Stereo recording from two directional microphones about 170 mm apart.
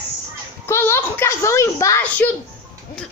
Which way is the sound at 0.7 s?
15° left (ahead or behind).